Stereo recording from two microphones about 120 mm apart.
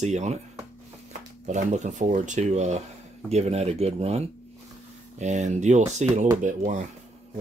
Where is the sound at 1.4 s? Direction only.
80° right; by 4.2 s 60° right (ahead or behind).